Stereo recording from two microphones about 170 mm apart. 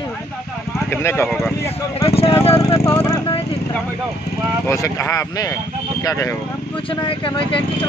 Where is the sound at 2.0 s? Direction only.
35° left (ahead or behind).